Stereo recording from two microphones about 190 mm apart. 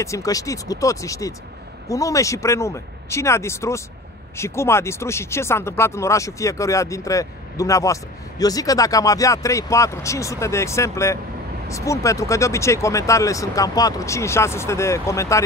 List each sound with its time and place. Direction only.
0.0 s speech: 15° left (ahead or behind)